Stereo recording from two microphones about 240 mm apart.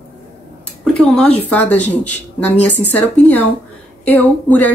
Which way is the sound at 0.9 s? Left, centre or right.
Centre.